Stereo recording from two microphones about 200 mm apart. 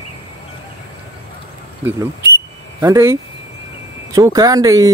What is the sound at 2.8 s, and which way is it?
Speech, 15° right (ahead or behind).